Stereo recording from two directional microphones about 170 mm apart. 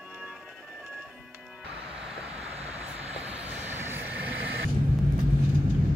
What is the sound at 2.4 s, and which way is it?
Vehicle, 40° right (ahead or behind).